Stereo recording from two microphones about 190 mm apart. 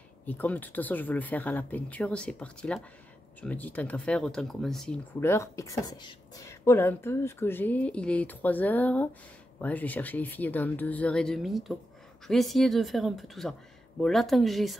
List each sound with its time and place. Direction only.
0.2 s speech: 10° left (ahead or behind)
5.2 s speech: 15° left (ahead or behind)